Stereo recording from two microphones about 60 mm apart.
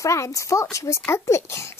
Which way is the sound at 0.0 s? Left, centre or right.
Left.